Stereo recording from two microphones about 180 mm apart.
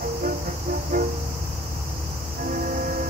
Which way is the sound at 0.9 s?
50° right (ahead or behind).